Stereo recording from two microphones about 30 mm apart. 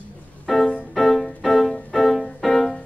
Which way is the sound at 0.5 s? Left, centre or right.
Left.